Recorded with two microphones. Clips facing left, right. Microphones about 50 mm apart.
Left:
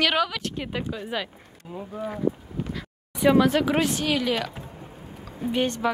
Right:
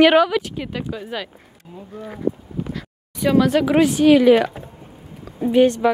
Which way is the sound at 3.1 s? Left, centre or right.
Centre.